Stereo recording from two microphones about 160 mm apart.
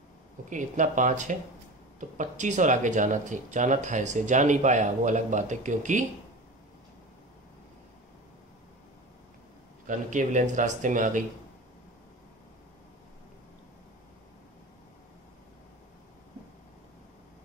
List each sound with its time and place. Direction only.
0.5 s speech: 50° right (ahead or behind)
9.8 s speech: 50° right (ahead or behind)